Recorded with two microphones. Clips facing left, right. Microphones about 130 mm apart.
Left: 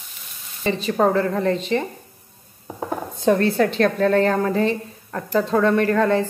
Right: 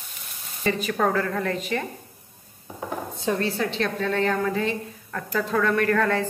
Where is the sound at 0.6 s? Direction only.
25° left (ahead or behind).